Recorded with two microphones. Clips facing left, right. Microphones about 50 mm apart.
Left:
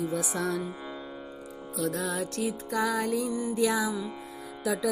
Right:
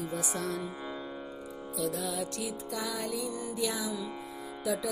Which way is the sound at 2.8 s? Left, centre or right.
Left.